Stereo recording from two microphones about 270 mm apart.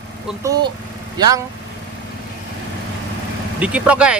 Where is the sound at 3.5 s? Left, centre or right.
Centre.